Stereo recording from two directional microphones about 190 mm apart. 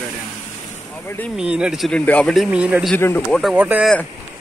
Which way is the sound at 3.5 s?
10° right (ahead or behind).